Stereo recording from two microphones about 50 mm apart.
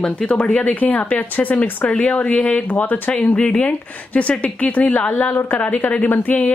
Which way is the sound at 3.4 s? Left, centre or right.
Centre.